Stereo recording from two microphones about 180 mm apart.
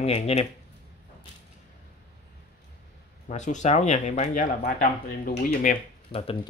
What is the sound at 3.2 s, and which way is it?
Speech, 40° left (ahead or behind).